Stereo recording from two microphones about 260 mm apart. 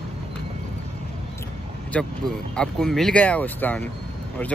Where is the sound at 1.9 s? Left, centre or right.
Centre.